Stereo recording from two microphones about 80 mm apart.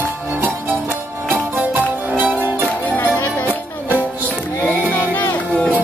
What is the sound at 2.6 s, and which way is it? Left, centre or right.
Music, left.